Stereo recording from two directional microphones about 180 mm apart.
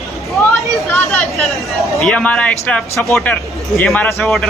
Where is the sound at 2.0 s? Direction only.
5° left (ahead or behind).